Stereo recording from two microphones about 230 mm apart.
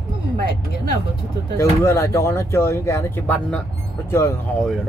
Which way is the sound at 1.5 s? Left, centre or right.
Centre.